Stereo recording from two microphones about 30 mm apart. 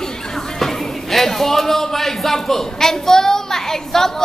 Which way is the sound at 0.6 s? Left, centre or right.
Centre.